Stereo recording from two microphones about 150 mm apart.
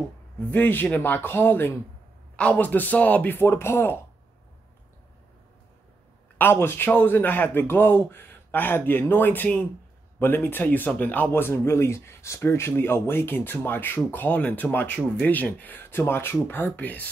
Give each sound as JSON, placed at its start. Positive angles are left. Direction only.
{"t": 0.5, "sound": "speech", "side_deg": 15}
{"t": 6.3, "sound": "speech", "side_deg": 15}